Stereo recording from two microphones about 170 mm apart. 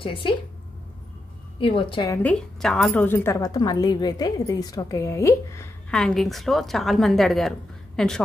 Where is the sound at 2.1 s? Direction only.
10° left (ahead or behind).